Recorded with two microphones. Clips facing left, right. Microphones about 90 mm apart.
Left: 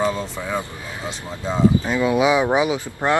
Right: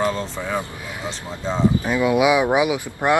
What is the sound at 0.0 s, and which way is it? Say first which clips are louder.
Speech: even; 5° left (ahead or behind).